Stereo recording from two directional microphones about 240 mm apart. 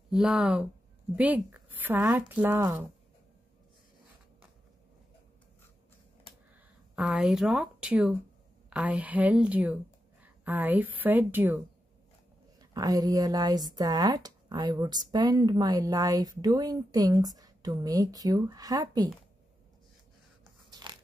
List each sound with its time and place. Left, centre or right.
0.1 s a woman's voice: centre
7.0 s a woman's voice: centre
20.9 s biting: centre